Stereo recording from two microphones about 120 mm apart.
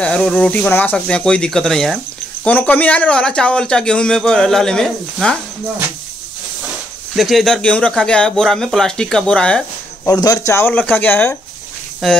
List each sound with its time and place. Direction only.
0.0 s speech: 5° left (ahead or behind)
7.2 s speech: centre (ahead or behind)
10.0 s speech: 35° left (ahead or behind)
10.7 s speech: 15° left (ahead or behind)
12.0 s speech: centre (ahead or behind)